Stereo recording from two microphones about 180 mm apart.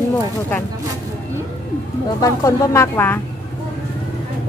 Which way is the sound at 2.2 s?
15° left (ahead or behind).